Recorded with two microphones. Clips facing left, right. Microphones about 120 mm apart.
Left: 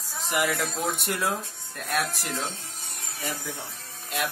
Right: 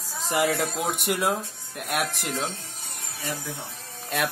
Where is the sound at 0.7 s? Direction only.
15° right (ahead or behind).